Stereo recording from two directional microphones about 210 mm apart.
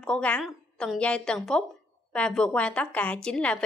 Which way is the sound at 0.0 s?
5° left (ahead or behind).